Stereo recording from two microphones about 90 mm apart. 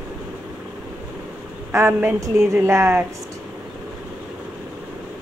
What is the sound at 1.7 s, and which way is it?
A woman's voice, 30° right (ahead or behind).